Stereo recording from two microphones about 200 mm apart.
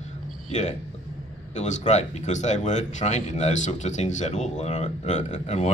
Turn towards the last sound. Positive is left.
turn(degrees=35)  # may be behind; listen again after turning